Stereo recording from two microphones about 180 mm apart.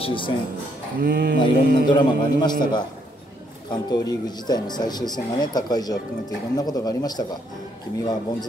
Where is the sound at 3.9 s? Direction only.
25° left (ahead or behind).